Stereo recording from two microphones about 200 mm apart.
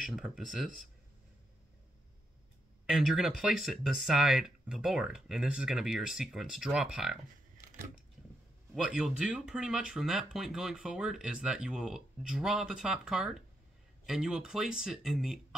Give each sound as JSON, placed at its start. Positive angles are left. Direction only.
{"t": 0.0, "sound": "speech", "side_deg": -5}
{"t": 2.9, "sound": "speech", "side_deg": -5}
{"t": 7.6, "sound": "a sound", "side_deg": -40}
{"t": 8.7, "sound": "speech", "side_deg": -5}